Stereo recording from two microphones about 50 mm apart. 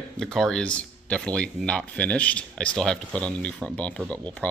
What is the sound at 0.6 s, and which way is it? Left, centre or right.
Speech, left.